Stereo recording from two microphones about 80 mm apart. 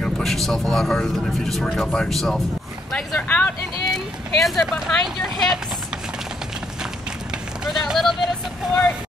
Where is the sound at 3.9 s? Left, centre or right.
Centre.